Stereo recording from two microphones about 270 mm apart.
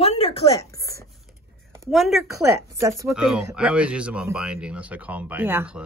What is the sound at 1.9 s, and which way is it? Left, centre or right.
Speech, centre.